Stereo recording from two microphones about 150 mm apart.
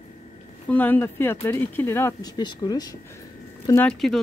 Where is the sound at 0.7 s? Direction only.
10° left (ahead or behind).